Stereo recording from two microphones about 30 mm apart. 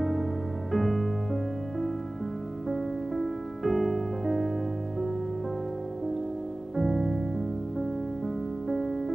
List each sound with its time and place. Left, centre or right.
0.7 s music: centre
6.8 s music: centre